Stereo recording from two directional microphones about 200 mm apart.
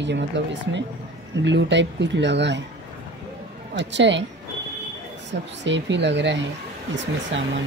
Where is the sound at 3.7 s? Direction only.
65° right (ahead or behind).